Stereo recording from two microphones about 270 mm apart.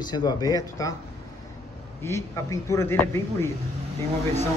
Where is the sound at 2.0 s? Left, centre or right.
Centre.